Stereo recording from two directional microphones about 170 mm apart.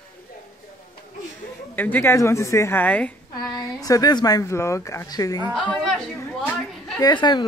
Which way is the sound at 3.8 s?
20° left (ahead or behind).